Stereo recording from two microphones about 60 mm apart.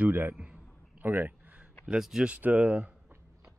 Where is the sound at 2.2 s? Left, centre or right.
Right.